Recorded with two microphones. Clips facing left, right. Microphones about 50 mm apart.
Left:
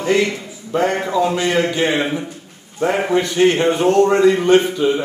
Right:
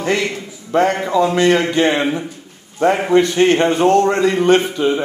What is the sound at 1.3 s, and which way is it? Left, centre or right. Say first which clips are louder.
Speech: right 4 dB; right.